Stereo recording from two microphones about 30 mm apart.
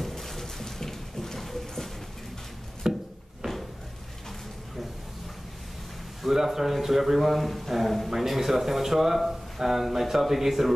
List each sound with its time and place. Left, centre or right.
0.0 s a sound: centre
2.8 s wood: right
6.2 s a man's voice: centre